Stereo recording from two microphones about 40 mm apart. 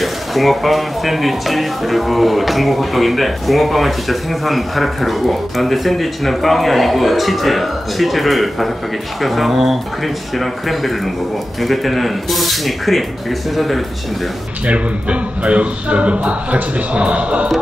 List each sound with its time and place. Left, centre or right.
0.0 s speech: centre
14.7 s speech: right